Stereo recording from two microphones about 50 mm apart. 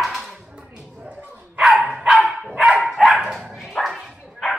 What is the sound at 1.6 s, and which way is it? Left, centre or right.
Dog, centre.